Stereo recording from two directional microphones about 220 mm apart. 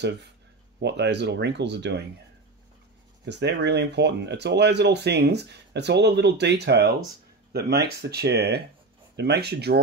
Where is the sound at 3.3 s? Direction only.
50° right (ahead or behind).